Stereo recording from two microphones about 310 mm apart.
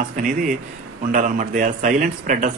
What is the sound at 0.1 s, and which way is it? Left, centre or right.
A man's voice, right.